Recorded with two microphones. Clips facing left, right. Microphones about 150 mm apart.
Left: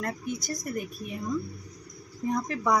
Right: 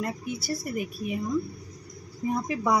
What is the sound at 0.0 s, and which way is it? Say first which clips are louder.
Speech: right 1 dB; 5° right (ahead or behind).